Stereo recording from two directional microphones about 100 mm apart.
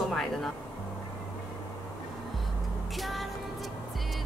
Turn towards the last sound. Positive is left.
turn(degrees=0)  # may be behind; listen again after turning